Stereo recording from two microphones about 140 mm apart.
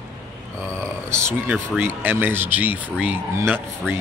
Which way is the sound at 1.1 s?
15° right (ahead or behind).